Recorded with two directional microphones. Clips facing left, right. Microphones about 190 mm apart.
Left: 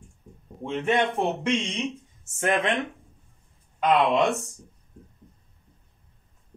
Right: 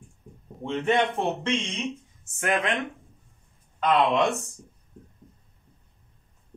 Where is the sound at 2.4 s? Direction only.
30° left (ahead or behind).